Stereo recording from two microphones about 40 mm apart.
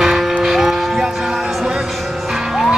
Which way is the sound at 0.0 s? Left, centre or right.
Centre.